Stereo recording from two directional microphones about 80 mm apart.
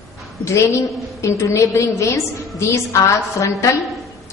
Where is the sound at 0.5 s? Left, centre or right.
Left.